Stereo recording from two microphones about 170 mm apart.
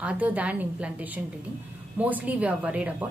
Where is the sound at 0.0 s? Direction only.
10° right (ahead or behind).